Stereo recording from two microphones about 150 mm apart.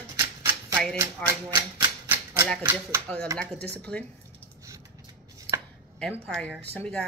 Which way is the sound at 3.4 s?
5° left (ahead or behind).